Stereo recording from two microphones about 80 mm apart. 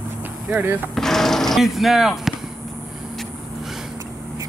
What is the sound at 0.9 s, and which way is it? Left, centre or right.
Gunshot, centre.